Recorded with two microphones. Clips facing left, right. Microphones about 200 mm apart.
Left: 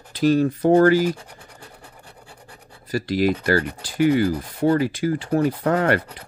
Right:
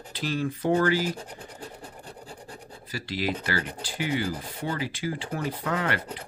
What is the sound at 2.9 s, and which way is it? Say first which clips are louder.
Speech: left 10 dB; 45° left (ahead or behind).